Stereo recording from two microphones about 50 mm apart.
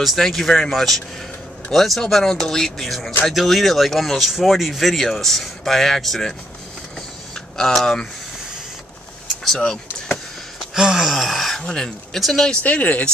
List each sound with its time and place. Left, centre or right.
0.0 s speech: centre
7.5 s speech: centre
9.6 s speech: centre
10.7 s gasp: centre
11.1 s speech: centre
11.6 s speech: centre
12.6 s speech: left